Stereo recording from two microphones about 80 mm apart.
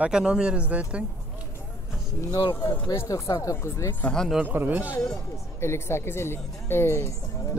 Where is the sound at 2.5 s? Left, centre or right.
Left.